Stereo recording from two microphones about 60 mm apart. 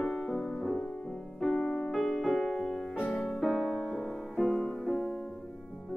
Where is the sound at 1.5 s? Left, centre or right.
Left.